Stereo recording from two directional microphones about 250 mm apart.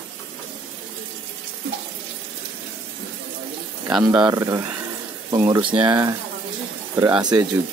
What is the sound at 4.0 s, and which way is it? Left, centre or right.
Speech, centre.